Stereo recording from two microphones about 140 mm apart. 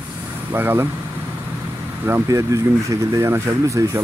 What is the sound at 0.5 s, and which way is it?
Speech, 15° right (ahead or behind).